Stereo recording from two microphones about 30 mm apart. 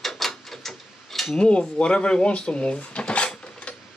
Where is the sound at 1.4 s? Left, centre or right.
Left.